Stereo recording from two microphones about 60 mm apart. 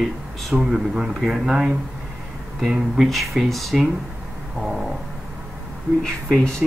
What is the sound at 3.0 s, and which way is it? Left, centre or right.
Speech, centre.